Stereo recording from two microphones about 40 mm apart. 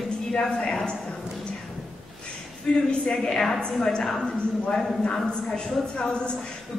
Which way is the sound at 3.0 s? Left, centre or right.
Left.